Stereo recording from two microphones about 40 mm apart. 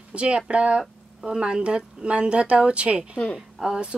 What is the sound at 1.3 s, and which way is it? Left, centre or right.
Speech, centre.